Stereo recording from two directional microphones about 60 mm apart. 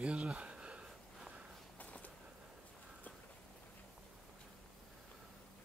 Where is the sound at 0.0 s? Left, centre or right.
Centre.